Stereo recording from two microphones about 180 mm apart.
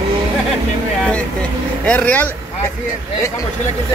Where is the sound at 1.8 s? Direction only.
5° left (ahead or behind).